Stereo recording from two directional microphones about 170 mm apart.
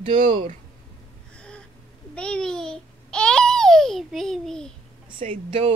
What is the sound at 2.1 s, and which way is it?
A child's voice, 5° left (ahead or behind).